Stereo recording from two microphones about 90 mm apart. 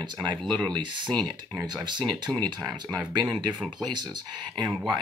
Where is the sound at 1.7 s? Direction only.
55° right (ahead or behind).